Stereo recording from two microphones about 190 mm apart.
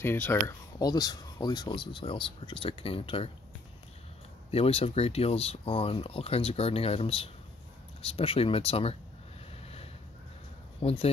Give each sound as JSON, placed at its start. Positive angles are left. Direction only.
{"t": 0.0, "sound": "speech", "side_deg": 10}
{"t": 4.5, "sound": "speech", "side_deg": 30}
{"t": 10.8, "sound": "speech", "side_deg": 30}